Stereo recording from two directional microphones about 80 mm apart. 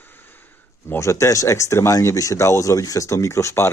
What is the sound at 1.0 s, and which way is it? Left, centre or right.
Speech, left.